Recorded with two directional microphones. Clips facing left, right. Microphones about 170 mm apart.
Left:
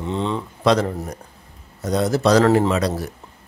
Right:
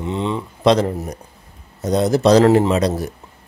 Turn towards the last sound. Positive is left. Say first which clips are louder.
# right 3 dB
turn(degrees=-20)  # may be behind; listen again after turning